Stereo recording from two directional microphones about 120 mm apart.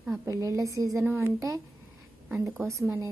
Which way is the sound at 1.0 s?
15° right (ahead or behind).